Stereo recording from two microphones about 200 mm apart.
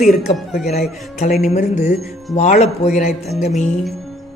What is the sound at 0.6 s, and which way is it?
A man's voice, 35° left (ahead or behind).